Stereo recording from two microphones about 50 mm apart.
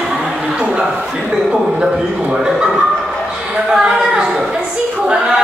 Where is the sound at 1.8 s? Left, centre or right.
Centre.